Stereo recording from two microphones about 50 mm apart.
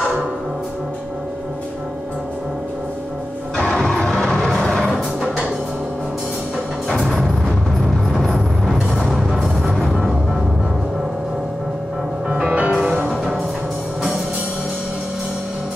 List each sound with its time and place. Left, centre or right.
3.5 s music: centre
8.1 s music: centre
12.4 s music: right
12.7 s music: centre